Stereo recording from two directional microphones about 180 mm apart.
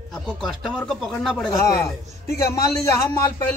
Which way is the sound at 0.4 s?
Centre (ahead or behind).